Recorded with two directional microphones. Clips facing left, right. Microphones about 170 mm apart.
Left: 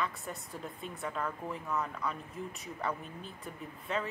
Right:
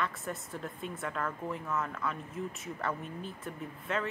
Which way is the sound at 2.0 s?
Centre (ahead or behind).